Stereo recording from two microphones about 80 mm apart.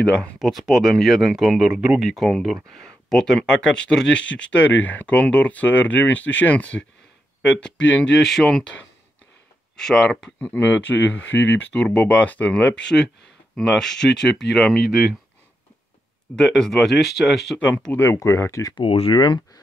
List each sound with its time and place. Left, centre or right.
0.0 s speech: centre
0.4 s speech: centre
2.0 s speech: centre
10.4 s speech: left; by 15.1 s centre
16.3 s speech: centre
17.6 s speech: centre
17.9 s speech: left
19.1 s speech: left